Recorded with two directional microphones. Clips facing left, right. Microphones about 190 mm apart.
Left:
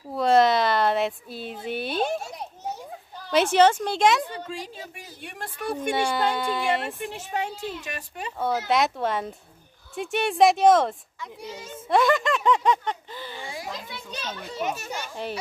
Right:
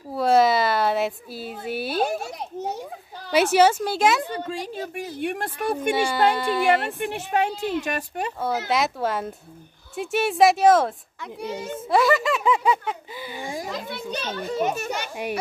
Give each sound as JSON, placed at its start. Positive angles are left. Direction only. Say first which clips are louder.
{"t": 0.1, "sound": "a woman's voice", "louder": "right 1 dB", "side_deg": -5}
{"t": 2.2, "sound": "children playing", "louder": "right 4 dB", "side_deg": -75}
{"t": 3.3, "sound": "speech", "louder": "right 1 dB", "side_deg": -10}
{"t": 4.3, "sound": "a woman's voice", "louder": "right 5 dB", "side_deg": -70}
{"t": 5.9, "sound": "speech", "louder": "right 3 dB", "side_deg": -5}
{"t": 7.0, "sound": "a woman's voice", "louder": "right 6 dB", "side_deg": -70}
{"t": 8.4, "sound": "speech", "louder": "left 1 dB", "side_deg": 0}
{"t": 11.1, "sound": "a woman's voice", "louder": "right 6 dB", "side_deg": -65}
{"t": 11.9, "sound": "speech", "louder": "right 1 dB", "side_deg": -5}
{"t": 13.4, "sound": "a child's voice", "louder": "right 8 dB", "side_deg": -45}
{"t": 13.7, "sound": "a woman's voice", "louder": "right 6 dB", "side_deg": -60}
{"t": 14.4, "sound": "a child's voice", "louder": "right 6 dB", "side_deg": -50}